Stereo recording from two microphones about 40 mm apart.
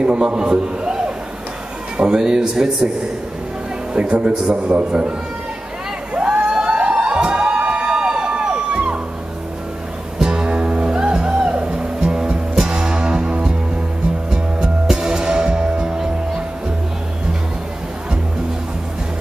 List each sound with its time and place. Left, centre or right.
0.0 s a man's voice: right
3.9 s speech: right
6.1 s crowd: right
10.1 s music: centre